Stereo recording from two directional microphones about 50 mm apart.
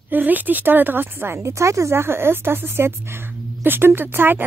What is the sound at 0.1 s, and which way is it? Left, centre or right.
A woman's voice, right.